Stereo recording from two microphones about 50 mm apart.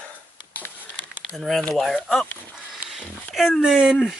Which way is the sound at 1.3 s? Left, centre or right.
Centre.